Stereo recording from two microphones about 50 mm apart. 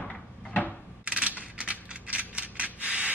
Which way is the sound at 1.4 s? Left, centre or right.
Right.